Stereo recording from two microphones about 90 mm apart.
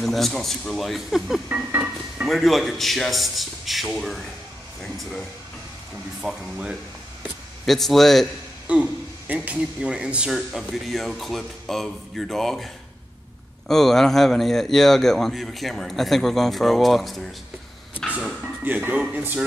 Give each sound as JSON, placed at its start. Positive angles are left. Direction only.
{"t": 0.0, "sound": "a man's voice", "side_deg": 0}
{"t": 1.5, "sound": "music", "side_deg": -15}
{"t": 2.2, "sound": "a man's voice", "side_deg": 0}
{"t": 6.2, "sound": "a man's voice", "side_deg": -5}
{"t": 8.7, "sound": "music", "side_deg": -15}
{"t": 9.3, "sound": "a man's voice", "side_deg": -15}
{"t": 13.7, "sound": "a man's voice", "side_deg": 5}
{"t": 18.4, "sound": "speech", "side_deg": -20}